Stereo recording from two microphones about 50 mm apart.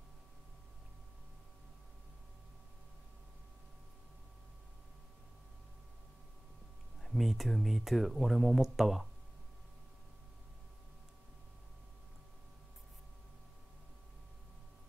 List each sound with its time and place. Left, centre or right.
7.0 s speech: centre